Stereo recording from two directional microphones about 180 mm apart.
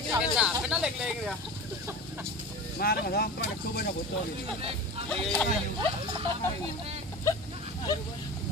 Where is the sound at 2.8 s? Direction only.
60° left (ahead or behind).